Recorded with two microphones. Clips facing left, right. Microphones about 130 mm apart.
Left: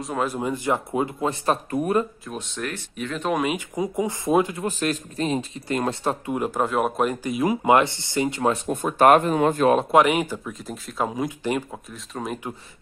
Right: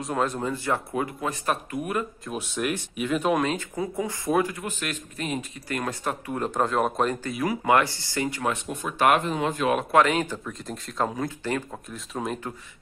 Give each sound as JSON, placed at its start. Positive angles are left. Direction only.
{"t": 0.0, "sound": "speech", "side_deg": 5}
{"t": 2.2, "sound": "speech", "side_deg": -10}
{"t": 3.3, "sound": "speech", "side_deg": 10}
{"t": 4.6, "sound": "speech", "side_deg": 35}
{"t": 6.3, "sound": "speech", "side_deg": 10}
{"t": 7.3, "sound": "speech", "side_deg": 20}
{"t": 8.6, "sound": "speech", "side_deg": 45}
{"t": 9.8, "sound": "speech", "side_deg": 20}
{"t": 11.7, "sound": "speech", "side_deg": 0}